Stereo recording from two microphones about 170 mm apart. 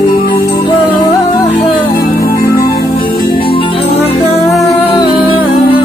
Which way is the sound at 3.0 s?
60° left (ahead or behind).